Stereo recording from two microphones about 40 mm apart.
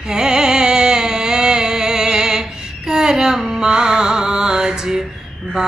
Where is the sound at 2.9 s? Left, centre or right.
Centre.